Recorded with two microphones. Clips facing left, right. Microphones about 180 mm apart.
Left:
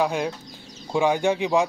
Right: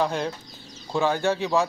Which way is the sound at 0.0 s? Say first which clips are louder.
Left 2 dB; 10° left (ahead or behind).